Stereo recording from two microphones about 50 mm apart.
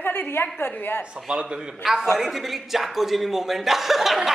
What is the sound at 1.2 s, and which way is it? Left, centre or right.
A man's voice, centre.